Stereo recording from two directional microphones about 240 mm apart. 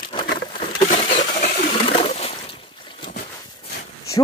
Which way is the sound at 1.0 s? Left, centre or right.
Left.